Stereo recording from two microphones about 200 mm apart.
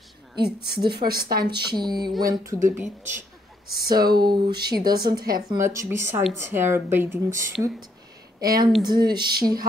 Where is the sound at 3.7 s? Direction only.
50° right (ahead or behind).